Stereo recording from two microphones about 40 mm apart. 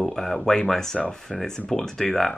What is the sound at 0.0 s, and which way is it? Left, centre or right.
Speech, centre.